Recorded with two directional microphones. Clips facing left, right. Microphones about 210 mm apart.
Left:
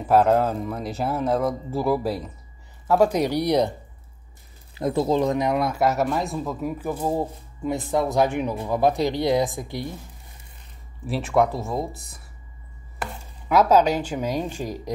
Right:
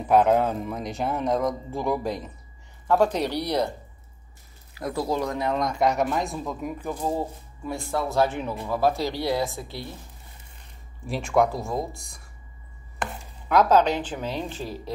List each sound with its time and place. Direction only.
0.1 s speech: centre (ahead or behind)
4.7 s speech: 25° left (ahead or behind)
11.1 s speech: centre (ahead or behind)